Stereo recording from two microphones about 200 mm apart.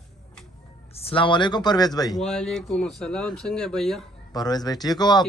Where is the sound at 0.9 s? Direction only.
30° left (ahead or behind).